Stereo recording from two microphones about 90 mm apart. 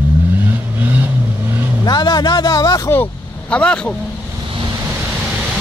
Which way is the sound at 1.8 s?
55° left (ahead or behind).